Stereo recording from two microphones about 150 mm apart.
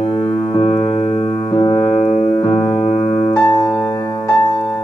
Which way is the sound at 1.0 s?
40° left (ahead or behind).